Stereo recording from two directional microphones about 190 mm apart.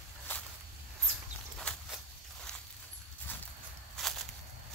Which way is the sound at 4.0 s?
Centre (ahead or behind).